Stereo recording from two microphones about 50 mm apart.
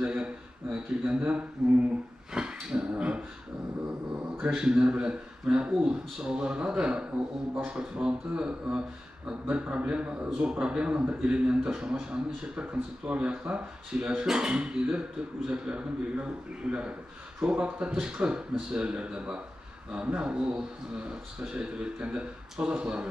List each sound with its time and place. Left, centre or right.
0.0 s speech: centre
2.3 s dog: centre
4.6 s a man's voice: centre
17.4 s a man's voice: right